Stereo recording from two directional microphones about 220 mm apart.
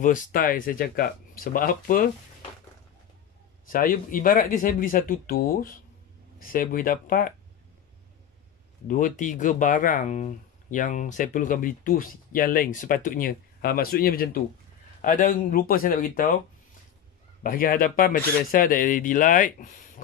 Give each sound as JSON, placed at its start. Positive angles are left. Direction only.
{"t": 0.0, "sound": "speech", "side_deg": 35}
{"t": 3.6, "sound": "speech", "side_deg": 40}
{"t": 8.8, "sound": "speech", "side_deg": 35}
{"t": 17.4, "sound": "speech", "side_deg": 40}